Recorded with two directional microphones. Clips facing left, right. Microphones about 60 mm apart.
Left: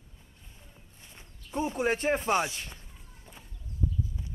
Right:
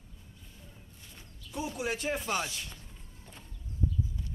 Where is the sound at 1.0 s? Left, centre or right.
Left.